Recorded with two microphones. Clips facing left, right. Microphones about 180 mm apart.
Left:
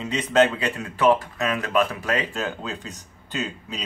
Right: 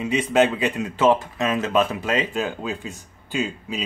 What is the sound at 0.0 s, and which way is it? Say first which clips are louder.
Speech: right 1 dB; 10° right (ahead or behind).